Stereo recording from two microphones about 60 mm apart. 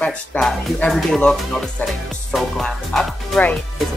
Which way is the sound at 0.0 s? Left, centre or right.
Centre.